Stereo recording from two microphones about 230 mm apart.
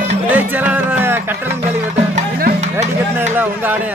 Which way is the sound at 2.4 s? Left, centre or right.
Right.